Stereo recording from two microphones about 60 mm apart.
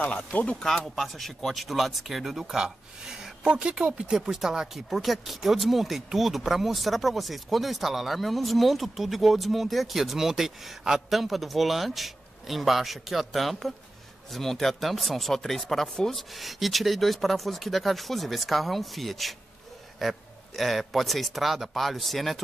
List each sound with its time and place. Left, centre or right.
0.0 s speech: left
0.6 s speech: centre; by 4.1 s right
4.1 s speech: centre